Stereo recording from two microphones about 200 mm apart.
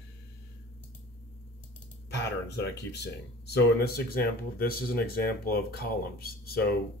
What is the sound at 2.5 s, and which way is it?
Speech, 55° left (ahead or behind).